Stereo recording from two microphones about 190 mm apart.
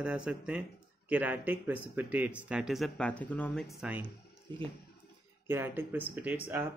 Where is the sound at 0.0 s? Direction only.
5° right (ahead or behind).